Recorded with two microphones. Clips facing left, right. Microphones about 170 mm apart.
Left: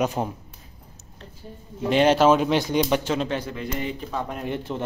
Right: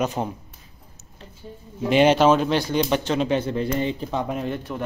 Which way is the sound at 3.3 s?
30° right (ahead or behind).